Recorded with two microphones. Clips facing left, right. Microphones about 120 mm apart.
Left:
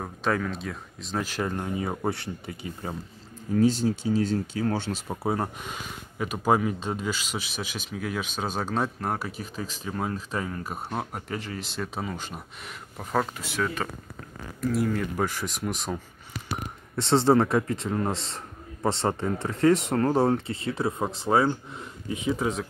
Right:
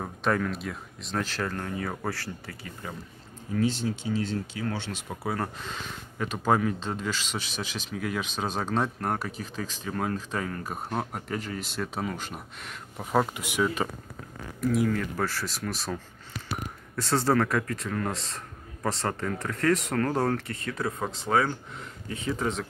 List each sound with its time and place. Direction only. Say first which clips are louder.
0.0 s speech: even; centre (ahead or behind)
1.2 s a man's voice: left 4 dB; 15° left (ahead or behind)
3.5 s speech: left 5 dB; 40° left (ahead or behind)
5.1 s speech: left 3 dB; 25° left (ahead or behind); by 13.8 s 15° right (ahead or behind)
14.6 s a man's voice: even; centre (ahead or behind); by 21.5 s 25° left (ahead or behind)
22.2 s speech: left 2 dB; 10° left (ahead or behind)